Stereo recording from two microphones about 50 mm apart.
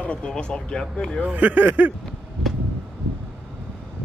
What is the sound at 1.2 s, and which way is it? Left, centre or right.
Speech, right.